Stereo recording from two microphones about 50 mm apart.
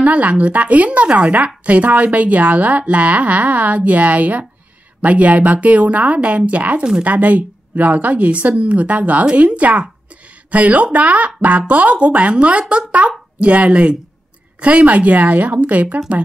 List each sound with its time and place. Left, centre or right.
0.0 s a woman's voice: right